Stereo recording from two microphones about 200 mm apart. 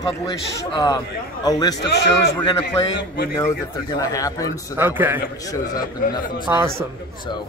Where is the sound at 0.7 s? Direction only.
20° left (ahead or behind).